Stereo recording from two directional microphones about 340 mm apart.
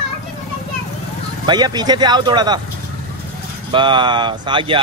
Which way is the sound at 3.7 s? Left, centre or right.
Centre.